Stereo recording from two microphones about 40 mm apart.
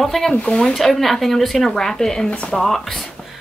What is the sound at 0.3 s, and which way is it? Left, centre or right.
Speech, left.